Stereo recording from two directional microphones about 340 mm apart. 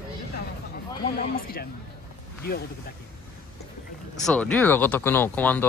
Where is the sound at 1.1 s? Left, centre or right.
Left.